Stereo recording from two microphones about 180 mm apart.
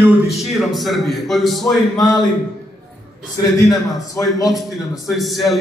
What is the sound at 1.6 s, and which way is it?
Speech, 20° left (ahead or behind).